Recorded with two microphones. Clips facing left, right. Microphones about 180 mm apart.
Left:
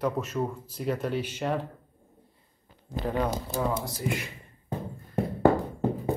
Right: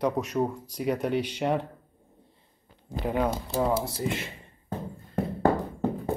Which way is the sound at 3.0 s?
10° right (ahead or behind).